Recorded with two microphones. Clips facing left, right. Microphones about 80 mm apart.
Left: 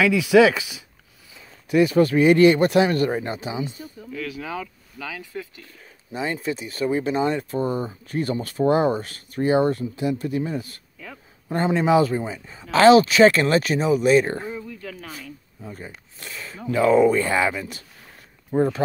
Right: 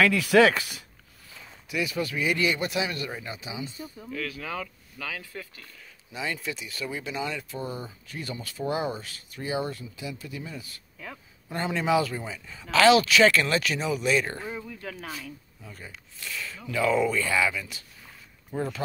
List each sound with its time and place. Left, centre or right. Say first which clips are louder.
0.0 s speech: left 4 dB; centre
1.7 s speech: left 12 dB; left
4.1 s speech: left 3 dB; centre
6.1 s speech: left 6 dB; left
11.4 s speech: left 7 dB; left
14.5 s speech: left 3 dB; centre
15.6 s speech: left 9 dB; left